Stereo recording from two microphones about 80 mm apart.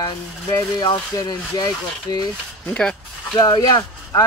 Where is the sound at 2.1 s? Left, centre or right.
Left.